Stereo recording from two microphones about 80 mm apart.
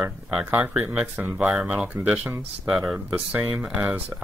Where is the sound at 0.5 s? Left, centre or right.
Right.